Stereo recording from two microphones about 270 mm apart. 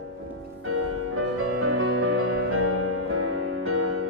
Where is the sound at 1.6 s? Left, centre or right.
Right.